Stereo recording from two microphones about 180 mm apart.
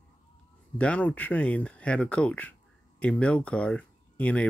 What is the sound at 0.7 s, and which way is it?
Speech, 5° left (ahead or behind).